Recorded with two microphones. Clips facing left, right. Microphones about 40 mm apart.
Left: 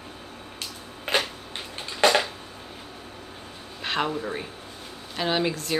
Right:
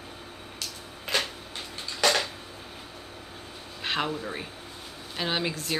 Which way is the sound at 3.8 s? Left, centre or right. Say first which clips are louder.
Left 2 dB; centre.